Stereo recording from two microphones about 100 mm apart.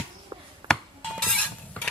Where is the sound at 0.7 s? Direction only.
5° left (ahead or behind).